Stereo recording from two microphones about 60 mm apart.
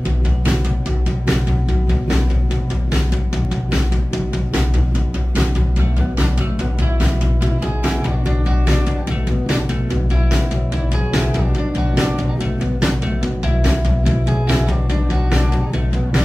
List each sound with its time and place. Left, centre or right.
12.8 s music: centre